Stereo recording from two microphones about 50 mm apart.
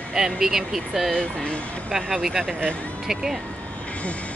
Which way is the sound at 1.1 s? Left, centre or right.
Centre.